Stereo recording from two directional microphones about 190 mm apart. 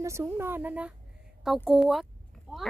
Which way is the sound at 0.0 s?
15° right (ahead or behind).